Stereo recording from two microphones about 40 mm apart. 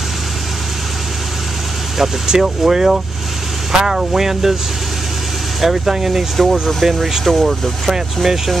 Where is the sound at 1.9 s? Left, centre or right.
Centre.